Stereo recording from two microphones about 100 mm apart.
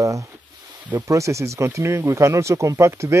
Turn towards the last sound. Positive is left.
turn(degrees=-30)  # may be behind; listen again after turning